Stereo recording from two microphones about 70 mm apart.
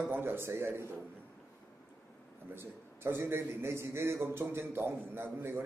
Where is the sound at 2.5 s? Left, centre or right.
Right.